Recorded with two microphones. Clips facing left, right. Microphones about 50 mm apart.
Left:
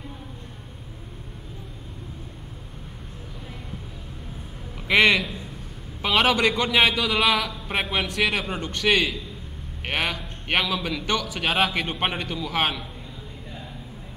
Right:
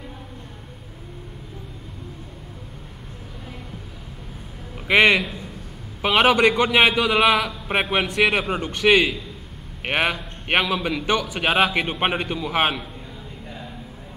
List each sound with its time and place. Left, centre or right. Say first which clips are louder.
4.8 s a man's voice: right 2 dB; centre